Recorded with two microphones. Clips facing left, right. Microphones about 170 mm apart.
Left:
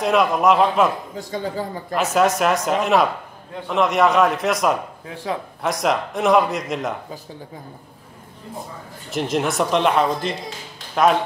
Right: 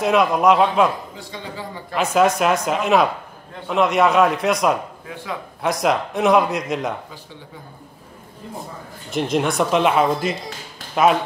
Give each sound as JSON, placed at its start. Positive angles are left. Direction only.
{"t": 0.0, "sound": "a man's voice", "side_deg": 0}
{"t": 1.1, "sound": "speech", "side_deg": 45}
{"t": 2.0, "sound": "a man's voice", "side_deg": 0}
{"t": 5.1, "sound": "a man's voice", "side_deg": 35}
{"t": 5.6, "sound": "a man's voice", "side_deg": 0}
{"t": 9.1, "sound": "a man's voice", "side_deg": 0}